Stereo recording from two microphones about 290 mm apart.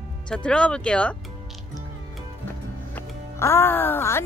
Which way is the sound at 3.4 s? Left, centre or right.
Centre.